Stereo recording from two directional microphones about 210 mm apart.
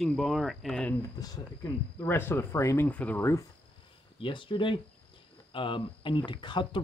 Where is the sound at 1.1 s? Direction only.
20° left (ahead or behind).